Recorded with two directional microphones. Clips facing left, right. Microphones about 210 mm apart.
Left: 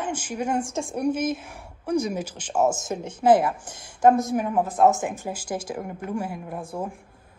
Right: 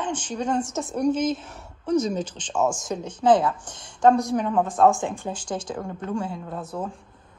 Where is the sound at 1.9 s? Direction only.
10° left (ahead or behind).